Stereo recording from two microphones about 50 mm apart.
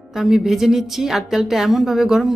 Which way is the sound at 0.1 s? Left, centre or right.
Centre.